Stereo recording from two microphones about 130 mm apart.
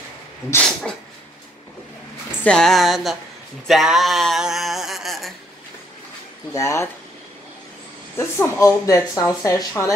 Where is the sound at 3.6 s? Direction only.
Centre (ahead or behind).